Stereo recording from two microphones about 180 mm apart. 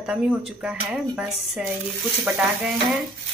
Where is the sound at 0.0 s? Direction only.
5° right (ahead or behind).